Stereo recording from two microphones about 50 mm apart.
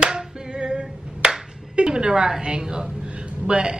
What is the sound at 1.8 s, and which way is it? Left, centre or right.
A woman's voice, centre.